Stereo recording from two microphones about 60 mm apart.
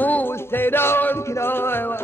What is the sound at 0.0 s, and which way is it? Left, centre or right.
Music, left.